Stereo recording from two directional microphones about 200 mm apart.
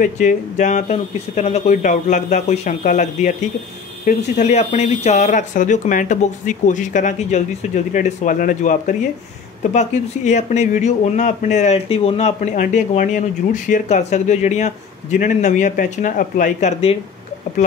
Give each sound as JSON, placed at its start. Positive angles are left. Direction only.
{"t": 0.0, "sound": "speech", "side_deg": 40}